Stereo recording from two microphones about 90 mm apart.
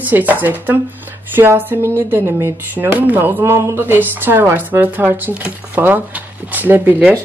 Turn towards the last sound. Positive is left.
turn(degrees=-20)  # may be behind; listen again after turning